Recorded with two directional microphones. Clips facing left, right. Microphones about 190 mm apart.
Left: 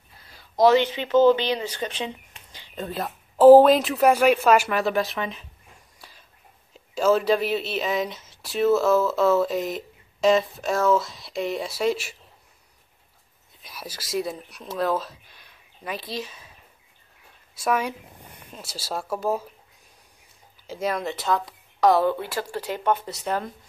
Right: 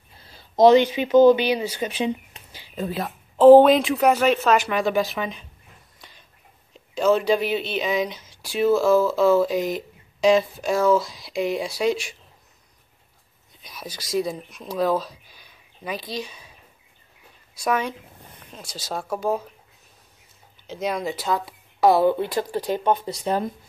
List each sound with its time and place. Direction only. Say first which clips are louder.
0.2 s speech: right 3 dB; 30° right (ahead or behind); by 5.5 s centre (ahead or behind)
5.9 s a sound: even; 5° left (ahead or behind)
6.7 s speech: right 1 dB; 5° left (ahead or behind)
13.6 s speech: right 1 dB; 5° left (ahead or behind)
17.6 s speech: even; 5° left (ahead or behind)
20.6 s speech: right 1 dB; 5° left (ahead or behind); by 23.5 s 15° right (ahead or behind)